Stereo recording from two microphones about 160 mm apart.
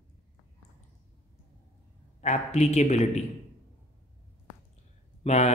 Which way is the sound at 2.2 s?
45° left (ahead or behind).